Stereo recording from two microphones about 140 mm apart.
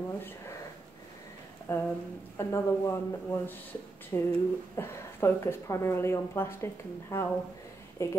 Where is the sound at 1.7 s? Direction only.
15° left (ahead or behind).